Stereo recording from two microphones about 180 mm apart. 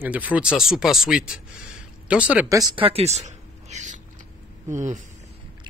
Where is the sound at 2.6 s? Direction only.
30° right (ahead or behind).